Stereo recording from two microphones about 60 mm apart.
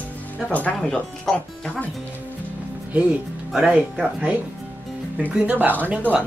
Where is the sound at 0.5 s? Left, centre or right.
Left.